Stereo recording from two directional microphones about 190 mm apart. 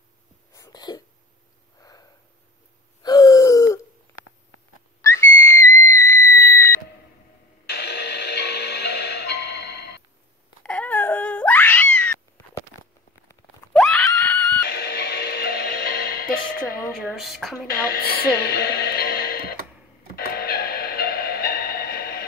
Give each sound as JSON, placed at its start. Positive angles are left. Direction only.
{"t": 0.5, "sound": "a sound", "side_deg": 20}
{"t": 1.8, "sound": "sniff", "side_deg": 20}
{"t": 3.0, "sound": "gasp", "side_deg": 20}
{"t": 5.0, "sound": "whistle", "side_deg": 15}
{"t": 7.6, "sound": "music", "side_deg": 65}
{"t": 10.6, "sound": "wail", "side_deg": 5}
{"t": 13.7, "sound": "screaming", "side_deg": 0}
{"t": 14.7, "sound": "music", "side_deg": 60}
{"t": 16.9, "sound": "a sound", "side_deg": 0}
{"t": 17.6, "sound": "speech", "side_deg": 50}
{"t": 20.2, "sound": "music", "side_deg": 50}